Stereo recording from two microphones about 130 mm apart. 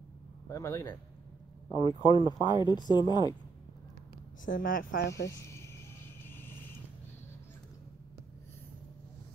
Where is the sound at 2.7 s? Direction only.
35° left (ahead or behind).